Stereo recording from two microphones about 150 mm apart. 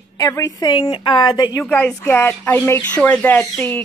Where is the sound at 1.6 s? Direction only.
10° left (ahead or behind).